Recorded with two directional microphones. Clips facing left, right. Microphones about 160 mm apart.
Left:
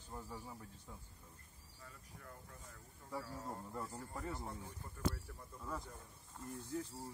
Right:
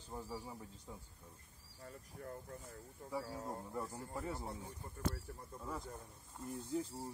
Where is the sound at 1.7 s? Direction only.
45° right (ahead or behind).